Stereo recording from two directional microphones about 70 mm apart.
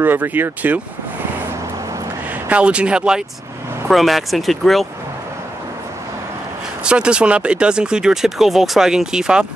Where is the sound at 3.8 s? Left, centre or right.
Centre.